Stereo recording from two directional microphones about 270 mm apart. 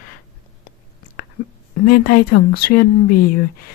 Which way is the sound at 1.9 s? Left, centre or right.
Left.